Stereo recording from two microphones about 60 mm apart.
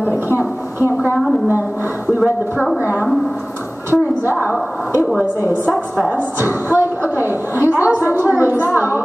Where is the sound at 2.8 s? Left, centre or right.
Right.